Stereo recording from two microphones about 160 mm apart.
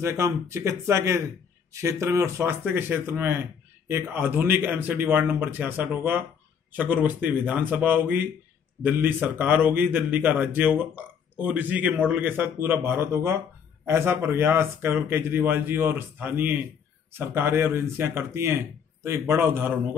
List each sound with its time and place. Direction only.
0.0 s a man's voice: 15° right (ahead or behind)